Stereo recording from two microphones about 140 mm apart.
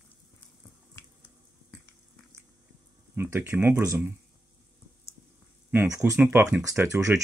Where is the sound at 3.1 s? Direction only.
15° right (ahead or behind).